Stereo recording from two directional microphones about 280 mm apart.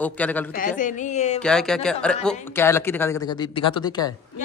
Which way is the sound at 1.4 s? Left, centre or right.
Centre.